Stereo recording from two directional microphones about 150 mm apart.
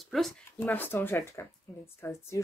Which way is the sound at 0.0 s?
Centre (ahead or behind).